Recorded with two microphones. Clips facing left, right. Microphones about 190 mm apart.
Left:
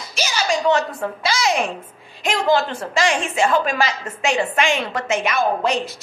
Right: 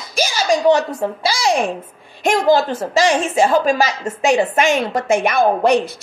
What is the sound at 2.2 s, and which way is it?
Speech, 50° right (ahead or behind).